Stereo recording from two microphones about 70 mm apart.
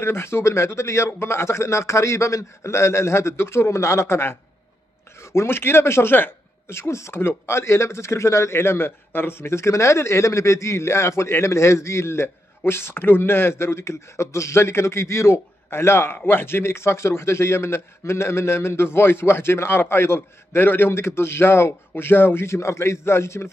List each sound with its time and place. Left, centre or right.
0.0 s speech: left